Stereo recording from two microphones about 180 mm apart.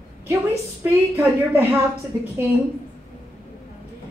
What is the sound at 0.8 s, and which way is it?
Speech, 15° right (ahead or behind).